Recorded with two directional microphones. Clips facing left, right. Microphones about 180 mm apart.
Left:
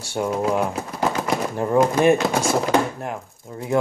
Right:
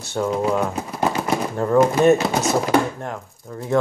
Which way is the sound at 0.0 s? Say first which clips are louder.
Right 1 dB; 10° left (ahead or behind).